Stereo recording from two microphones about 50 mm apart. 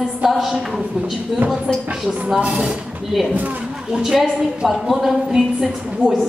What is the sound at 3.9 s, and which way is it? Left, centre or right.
A woman's voice, centre.